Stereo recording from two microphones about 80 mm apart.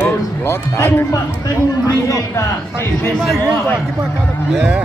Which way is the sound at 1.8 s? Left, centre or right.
Left.